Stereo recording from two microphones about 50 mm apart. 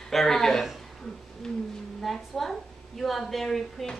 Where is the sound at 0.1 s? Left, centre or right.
Centre.